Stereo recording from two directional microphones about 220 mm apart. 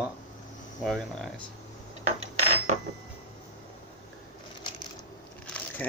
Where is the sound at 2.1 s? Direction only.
30° right (ahead or behind).